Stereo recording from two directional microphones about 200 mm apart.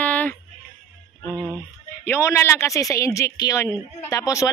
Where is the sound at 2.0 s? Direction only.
15° left (ahead or behind).